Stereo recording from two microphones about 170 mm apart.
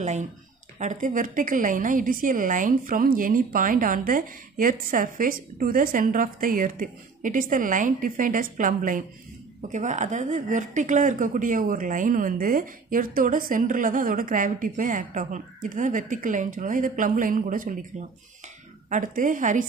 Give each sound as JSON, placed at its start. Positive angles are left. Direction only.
{"t": 0.0, "sound": "a woman's voice", "side_deg": -45}
{"t": 18.9, "sound": "a woman's voice", "side_deg": -50}